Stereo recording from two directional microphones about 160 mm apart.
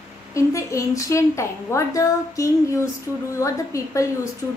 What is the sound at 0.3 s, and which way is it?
A woman's voice, 20° left (ahead or behind).